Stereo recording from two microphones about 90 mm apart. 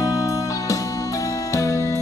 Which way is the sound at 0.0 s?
40° left (ahead or behind).